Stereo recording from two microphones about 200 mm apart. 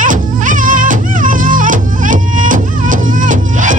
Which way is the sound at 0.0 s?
40° right (ahead or behind).